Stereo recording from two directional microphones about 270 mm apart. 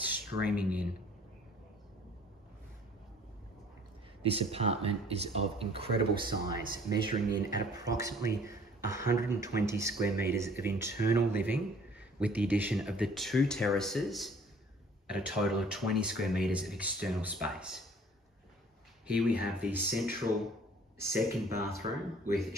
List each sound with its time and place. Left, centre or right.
0.1 s speech: centre
4.2 s speech: right; by 17.8 s centre
19.0 s speech: centre
21.1 s speech: centre